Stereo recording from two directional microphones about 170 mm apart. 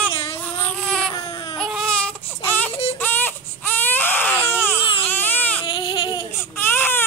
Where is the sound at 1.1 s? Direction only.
30° left (ahead or behind).